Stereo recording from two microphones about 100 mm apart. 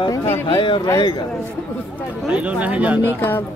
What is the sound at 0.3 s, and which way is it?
Speech, 60° left (ahead or behind).